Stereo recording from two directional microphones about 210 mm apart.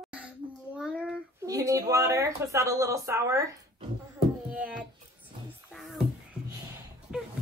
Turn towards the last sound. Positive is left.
turn(degrees=-5)  # may be behind; listen again after turning